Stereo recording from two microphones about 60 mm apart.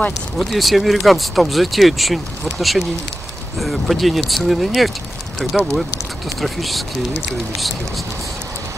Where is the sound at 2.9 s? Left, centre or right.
Centre.